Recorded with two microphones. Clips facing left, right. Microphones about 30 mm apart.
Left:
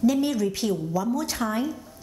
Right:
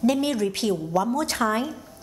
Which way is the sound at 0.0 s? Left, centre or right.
Right.